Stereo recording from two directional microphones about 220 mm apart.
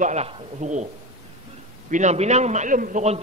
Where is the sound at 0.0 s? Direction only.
30° right (ahead or behind).